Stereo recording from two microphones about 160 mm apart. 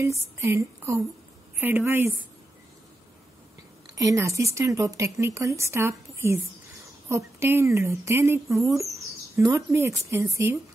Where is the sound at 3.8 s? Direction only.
20° right (ahead or behind).